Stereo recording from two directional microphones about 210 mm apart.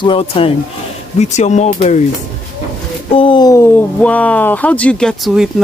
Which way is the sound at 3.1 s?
20° left (ahead or behind).